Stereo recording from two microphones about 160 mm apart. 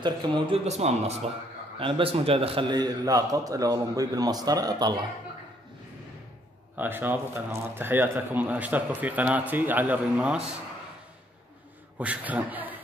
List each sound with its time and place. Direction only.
0.7 s a man's voice: 45° right (ahead or behind); by 4.9 s 25° right (ahead or behind)
6.8 s a man's voice: 10° right (ahead or behind)
12.0 s a man's voice: 10° right (ahead or behind)